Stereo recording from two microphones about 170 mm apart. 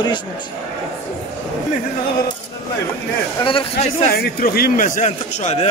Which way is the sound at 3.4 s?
35° left (ahead or behind).